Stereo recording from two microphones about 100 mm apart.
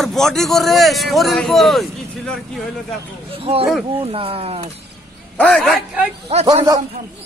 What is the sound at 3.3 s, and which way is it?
Speech, 75° right (ahead or behind).